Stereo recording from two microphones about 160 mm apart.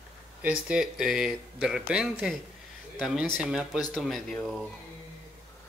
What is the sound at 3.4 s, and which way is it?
Speech, 5° right (ahead or behind).